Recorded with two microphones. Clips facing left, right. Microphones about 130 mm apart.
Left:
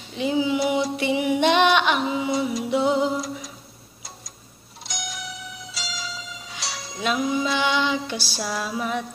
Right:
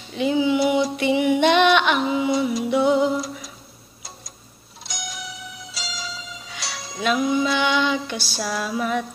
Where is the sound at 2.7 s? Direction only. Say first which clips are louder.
Right 3 dB; 30° left (ahead or behind).